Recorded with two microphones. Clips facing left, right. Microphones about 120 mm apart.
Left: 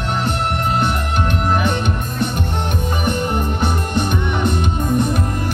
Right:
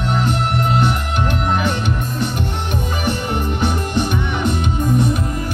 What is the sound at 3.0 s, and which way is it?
Music, 50° left (ahead or behind).